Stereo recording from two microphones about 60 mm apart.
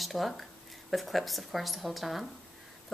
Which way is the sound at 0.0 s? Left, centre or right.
Centre.